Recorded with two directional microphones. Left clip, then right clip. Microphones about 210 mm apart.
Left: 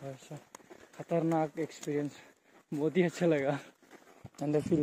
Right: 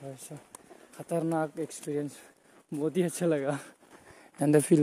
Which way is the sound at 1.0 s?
15° right (ahead or behind).